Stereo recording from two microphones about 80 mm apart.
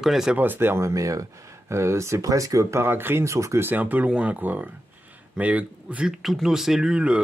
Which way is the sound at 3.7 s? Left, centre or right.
Right.